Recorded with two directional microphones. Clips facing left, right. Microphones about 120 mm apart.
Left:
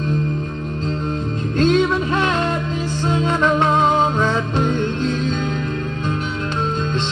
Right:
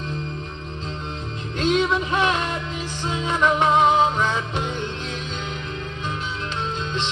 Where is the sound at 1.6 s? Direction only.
15° right (ahead or behind).